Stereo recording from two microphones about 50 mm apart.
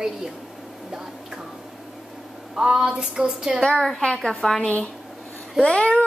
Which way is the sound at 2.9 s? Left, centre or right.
Centre.